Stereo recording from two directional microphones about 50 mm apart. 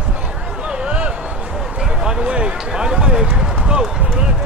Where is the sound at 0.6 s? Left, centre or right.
Centre.